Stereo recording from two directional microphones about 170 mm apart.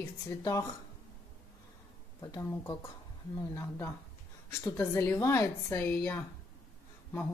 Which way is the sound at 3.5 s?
15° left (ahead or behind).